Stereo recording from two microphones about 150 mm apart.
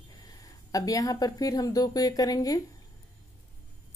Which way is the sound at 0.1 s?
25° left (ahead or behind).